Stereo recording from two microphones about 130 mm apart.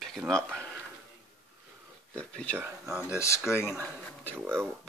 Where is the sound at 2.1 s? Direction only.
10° left (ahead or behind).